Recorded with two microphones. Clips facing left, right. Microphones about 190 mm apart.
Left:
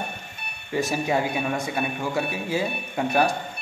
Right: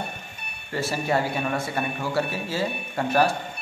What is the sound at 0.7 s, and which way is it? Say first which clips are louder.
Speech: left 2 dB; 15° left (ahead or behind).